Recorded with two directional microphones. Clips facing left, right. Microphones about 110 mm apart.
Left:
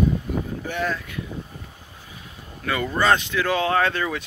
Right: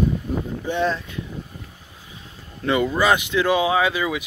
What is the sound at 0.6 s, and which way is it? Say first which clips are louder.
Speech: right 4 dB; 25° right (ahead or behind).